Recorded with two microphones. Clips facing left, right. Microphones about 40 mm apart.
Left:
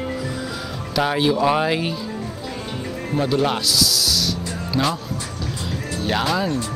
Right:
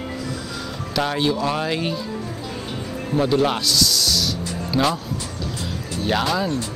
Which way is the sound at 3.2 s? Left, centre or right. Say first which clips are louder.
Right 1 dB; centre.